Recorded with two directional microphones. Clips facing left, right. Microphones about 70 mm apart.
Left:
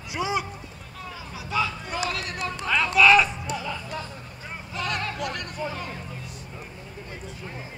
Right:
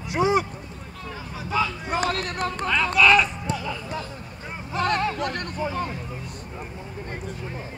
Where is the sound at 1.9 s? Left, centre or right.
Right.